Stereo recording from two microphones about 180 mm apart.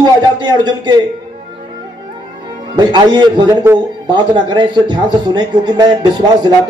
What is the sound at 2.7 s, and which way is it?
A man's voice, 25° right (ahead or behind).